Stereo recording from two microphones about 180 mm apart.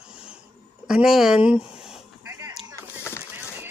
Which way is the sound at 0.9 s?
Centre (ahead or behind).